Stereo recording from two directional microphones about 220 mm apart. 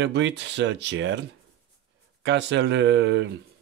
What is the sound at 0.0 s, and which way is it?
Speech, 55° right (ahead or behind).